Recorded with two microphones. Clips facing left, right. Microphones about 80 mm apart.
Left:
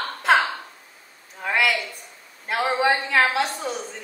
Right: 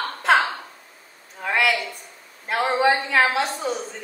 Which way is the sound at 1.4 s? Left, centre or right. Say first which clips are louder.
Right 1 dB; centre.